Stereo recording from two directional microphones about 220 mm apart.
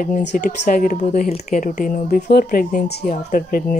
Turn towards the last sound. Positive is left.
turn(degrees=35)  # may be behind; listen again after turning